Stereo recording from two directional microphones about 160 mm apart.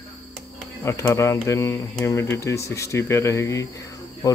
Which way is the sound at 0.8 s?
15° left (ahead or behind).